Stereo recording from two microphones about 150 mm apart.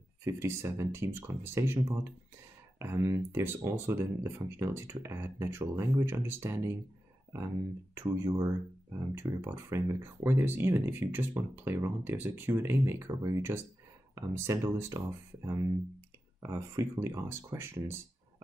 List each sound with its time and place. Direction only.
0.2 s speech: 20° right (ahead or behind)
7.9 s speech: 15° right (ahead or behind)